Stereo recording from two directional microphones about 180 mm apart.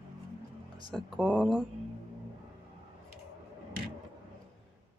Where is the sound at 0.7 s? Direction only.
25° right (ahead or behind).